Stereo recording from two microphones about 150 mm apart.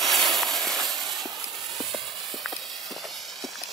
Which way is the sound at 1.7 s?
Centre (ahead or behind).